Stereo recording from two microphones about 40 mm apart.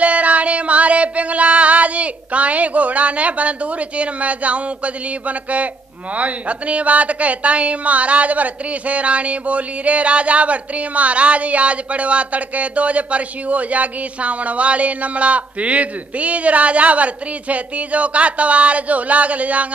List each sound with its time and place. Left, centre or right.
0.0 s music: right
6.1 s speech: right